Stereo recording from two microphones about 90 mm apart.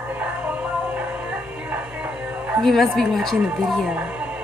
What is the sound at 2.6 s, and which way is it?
Speech, centre (ahead or behind).